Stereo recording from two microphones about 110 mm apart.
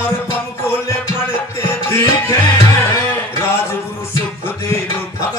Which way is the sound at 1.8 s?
25° left (ahead or behind).